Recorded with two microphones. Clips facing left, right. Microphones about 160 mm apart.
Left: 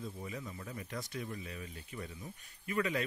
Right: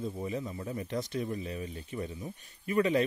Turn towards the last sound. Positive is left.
turn(degrees=-25)  # may be behind; listen again after turning